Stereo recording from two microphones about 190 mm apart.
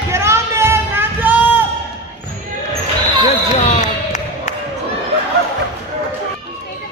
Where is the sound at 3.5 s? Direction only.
35° left (ahead or behind).